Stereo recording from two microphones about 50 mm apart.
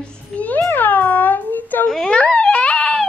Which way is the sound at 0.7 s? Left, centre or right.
Left.